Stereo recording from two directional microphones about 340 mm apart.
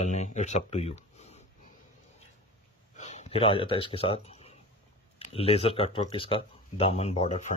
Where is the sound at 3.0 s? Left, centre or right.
Centre.